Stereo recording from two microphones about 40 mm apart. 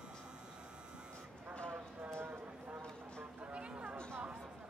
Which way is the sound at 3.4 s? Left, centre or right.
Right.